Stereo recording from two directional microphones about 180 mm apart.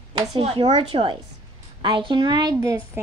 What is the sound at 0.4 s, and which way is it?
A woman's voice, 30° right (ahead or behind).